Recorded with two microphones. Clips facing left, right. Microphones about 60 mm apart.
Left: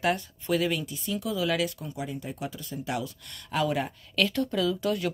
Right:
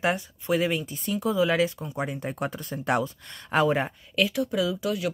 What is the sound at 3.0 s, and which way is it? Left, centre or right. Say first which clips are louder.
Speech: right 6 dB; right.